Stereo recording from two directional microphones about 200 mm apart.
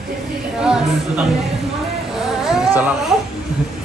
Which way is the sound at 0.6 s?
5° right (ahead or behind).